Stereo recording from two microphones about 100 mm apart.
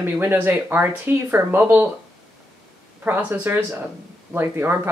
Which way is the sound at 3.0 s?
20° right (ahead or behind).